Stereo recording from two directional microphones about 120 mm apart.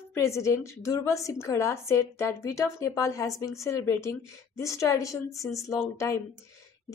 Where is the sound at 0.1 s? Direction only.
25° left (ahead or behind).